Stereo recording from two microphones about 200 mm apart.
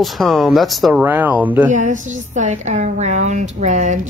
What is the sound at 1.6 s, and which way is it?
A woman's voice, 40° right (ahead or behind).